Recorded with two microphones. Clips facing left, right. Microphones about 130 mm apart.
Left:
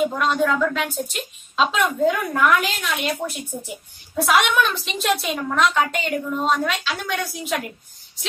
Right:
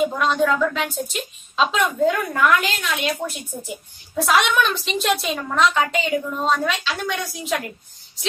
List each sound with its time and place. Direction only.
0.1 s a woman's voice: centre (ahead or behind)